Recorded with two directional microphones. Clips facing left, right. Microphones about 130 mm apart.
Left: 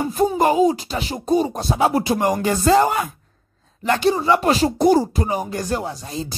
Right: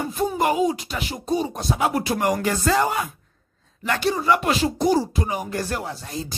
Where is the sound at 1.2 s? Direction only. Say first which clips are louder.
Left 5 dB; 45° left (ahead or behind).